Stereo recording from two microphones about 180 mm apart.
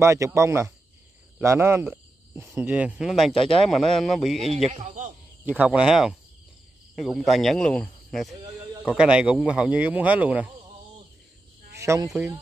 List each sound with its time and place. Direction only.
0.0 s speech: 15° right (ahead or behind); by 4.5 s centre (ahead or behind)
4.7 s speech: 40° right (ahead or behind)
5.4 s speech: 10° right (ahead or behind)
11.8 s speech: 15° right (ahead or behind)